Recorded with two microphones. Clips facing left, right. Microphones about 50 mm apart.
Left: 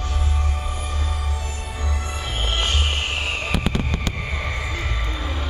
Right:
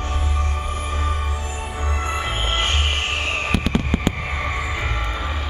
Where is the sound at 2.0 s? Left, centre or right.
Right.